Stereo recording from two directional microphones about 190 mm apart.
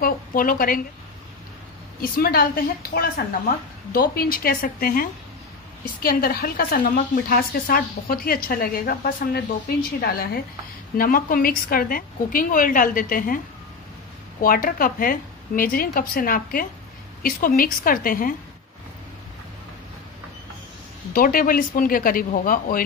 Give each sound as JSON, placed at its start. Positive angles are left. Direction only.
{"t": 0.0, "sound": "a woman's voice", "side_deg": 50}
{"t": 2.0, "sound": "a woman's voice", "side_deg": 50}
{"t": 6.0, "sound": "a woman's voice", "side_deg": 50}
{"t": 14.4, "sound": "a woman's voice", "side_deg": 50}
{"t": 21.1, "sound": "a woman's voice", "side_deg": 50}